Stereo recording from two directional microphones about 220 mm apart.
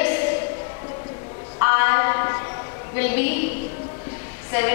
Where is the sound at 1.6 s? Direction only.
15° left (ahead or behind).